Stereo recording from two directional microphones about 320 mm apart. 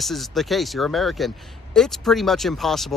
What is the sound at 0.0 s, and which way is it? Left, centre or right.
Speech, centre.